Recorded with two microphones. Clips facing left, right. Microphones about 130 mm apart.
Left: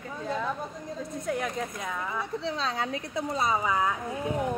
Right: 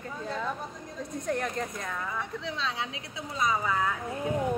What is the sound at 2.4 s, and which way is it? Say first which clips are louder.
Speech: left 3 dB; 40° left (ahead or behind).